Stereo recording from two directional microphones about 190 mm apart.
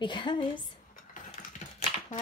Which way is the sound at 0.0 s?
25° left (ahead or behind).